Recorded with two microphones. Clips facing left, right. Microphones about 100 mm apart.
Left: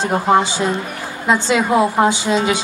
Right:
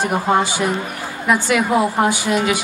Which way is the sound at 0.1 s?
20° left (ahead or behind).